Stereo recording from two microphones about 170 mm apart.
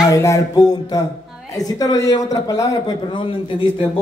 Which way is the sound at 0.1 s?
20° left (ahead or behind).